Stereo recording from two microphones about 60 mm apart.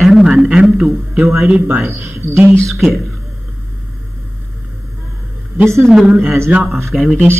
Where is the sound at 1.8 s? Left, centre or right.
Right.